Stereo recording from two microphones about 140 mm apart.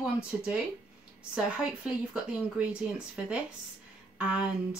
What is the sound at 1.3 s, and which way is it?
Speech, 5° right (ahead or behind).